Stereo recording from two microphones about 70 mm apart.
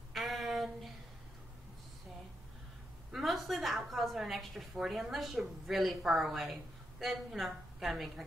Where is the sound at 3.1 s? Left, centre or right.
Centre.